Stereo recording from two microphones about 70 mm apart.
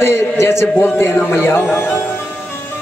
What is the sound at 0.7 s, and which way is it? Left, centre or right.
A man's voice, left.